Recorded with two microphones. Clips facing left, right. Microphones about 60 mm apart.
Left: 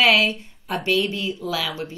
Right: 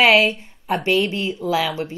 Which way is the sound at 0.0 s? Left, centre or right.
Right.